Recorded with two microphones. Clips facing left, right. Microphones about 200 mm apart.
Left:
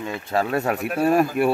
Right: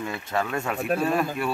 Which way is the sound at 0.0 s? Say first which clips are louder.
Left 4 dB; 30° left (ahead or behind).